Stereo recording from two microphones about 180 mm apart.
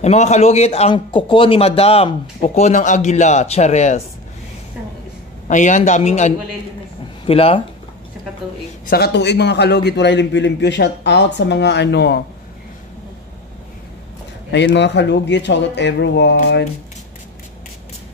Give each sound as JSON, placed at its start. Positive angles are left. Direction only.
{"t": 0.0, "sound": "a man's voice", "side_deg": 40}
{"t": 5.5, "sound": "a man's voice", "side_deg": 45}
{"t": 8.9, "sound": "a man's voice", "side_deg": 65}
{"t": 14.5, "sound": "a man's voice", "side_deg": 75}